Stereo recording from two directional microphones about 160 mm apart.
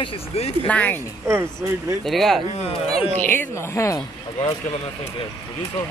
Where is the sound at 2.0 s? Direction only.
Centre (ahead or behind).